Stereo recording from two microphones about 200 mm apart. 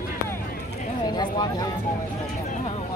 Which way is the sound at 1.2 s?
20° left (ahead or behind).